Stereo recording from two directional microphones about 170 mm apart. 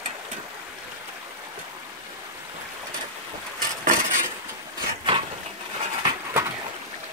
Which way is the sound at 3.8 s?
50° right (ahead or behind).